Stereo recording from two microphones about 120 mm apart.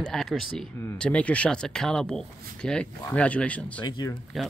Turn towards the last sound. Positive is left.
turn(degrees=0)  # may be behind; listen again after turning